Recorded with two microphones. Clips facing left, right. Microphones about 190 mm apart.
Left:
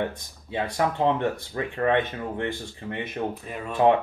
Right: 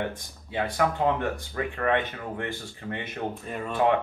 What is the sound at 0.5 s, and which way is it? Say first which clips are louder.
Speech: even; 25° left (ahead or behind).